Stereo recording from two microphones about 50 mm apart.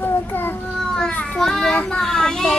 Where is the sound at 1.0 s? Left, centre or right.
Left.